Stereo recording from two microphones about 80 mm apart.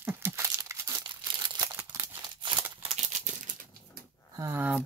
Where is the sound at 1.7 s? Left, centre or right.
Right.